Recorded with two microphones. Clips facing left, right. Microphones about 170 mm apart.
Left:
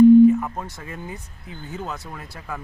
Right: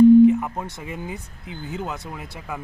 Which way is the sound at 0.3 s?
15° right (ahead or behind).